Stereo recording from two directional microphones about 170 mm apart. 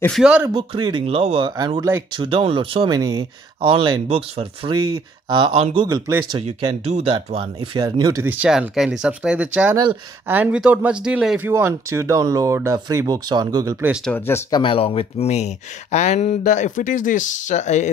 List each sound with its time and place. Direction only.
0.2 s speech: 5° right (ahead or behind)
0.5 s speech: 25° right (ahead or behind)
1.8 s speech: 15° right (ahead or behind)
2.1 s speech: 30° right (ahead or behind)
6.4 s speech: 40° right (ahead or behind); by 13.9 s 15° right (ahead or behind)
14.0 s speech: 10° left (ahead or behind)
14.6 s speech: 30° left (ahead or behind)